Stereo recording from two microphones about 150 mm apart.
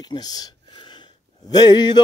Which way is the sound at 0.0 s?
25° left (ahead or behind).